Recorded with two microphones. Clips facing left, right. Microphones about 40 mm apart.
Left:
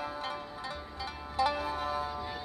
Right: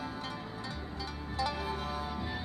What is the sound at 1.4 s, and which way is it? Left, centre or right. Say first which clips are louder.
Music: left 5 dB; left.